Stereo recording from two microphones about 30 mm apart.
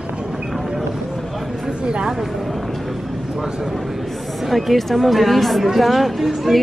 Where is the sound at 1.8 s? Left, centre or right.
Right.